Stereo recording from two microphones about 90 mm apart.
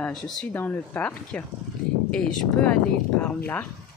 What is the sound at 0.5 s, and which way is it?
Speech, 20° left (ahead or behind).